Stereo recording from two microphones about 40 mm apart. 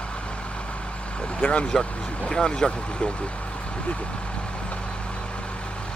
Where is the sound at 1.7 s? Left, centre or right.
Centre.